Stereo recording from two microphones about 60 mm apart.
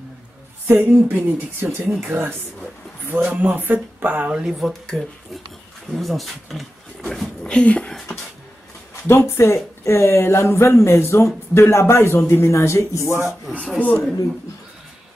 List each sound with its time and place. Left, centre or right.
0.7 s speech: right
3.1 s speech: right
4.3 s speech: centre
4.6 s speech: centre
7.4 s speech: centre
9.0 s speech: left
13.7 s speech: left